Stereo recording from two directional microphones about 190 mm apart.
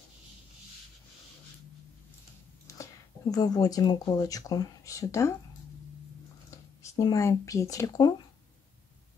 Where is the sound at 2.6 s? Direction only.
20° left (ahead or behind).